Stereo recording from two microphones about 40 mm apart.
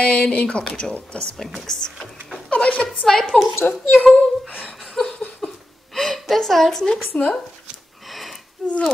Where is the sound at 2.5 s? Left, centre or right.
Left.